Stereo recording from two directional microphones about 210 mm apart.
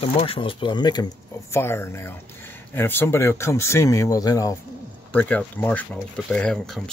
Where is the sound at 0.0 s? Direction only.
25° left (ahead or behind).